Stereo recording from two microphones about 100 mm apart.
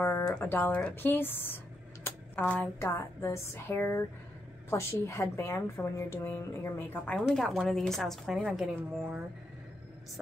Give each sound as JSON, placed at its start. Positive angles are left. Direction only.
{"t": 0.4, "sound": "a woman's voice", "side_deg": 20}
{"t": 2.0, "sound": "a sound", "side_deg": 20}
{"t": 2.8, "sound": "a woman's voice", "side_deg": 30}
{"t": 7.2, "sound": "a woman's voice", "side_deg": 0}
{"t": 8.4, "sound": "a woman's voice", "side_deg": -10}